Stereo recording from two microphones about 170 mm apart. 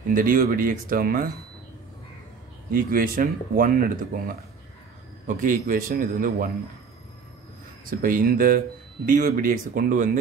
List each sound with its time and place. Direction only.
0.1 s speech: 55° right (ahead or behind)
2.7 s speech: 55° right (ahead or behind)
7.8 s speech: 55° right (ahead or behind)